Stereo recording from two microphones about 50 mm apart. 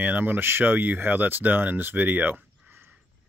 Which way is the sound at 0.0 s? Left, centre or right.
Right.